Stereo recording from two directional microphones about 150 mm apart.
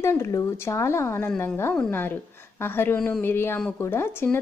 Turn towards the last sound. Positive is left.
turn(degrees=15)  # may be behind; listen again after turning